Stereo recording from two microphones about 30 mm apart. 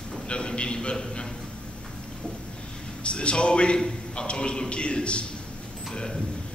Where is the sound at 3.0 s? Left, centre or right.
Left.